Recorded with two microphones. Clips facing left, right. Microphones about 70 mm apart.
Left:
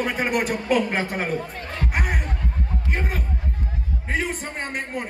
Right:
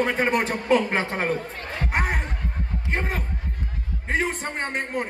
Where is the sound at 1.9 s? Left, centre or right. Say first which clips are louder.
Right 3 dB; right.